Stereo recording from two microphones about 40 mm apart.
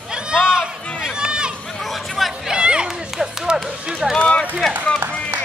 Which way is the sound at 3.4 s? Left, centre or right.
Right.